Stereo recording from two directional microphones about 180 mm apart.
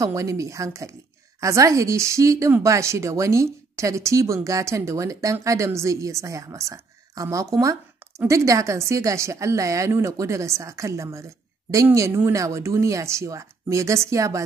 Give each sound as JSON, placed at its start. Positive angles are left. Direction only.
{"t": 0.0, "sound": "speech", "side_deg": -15}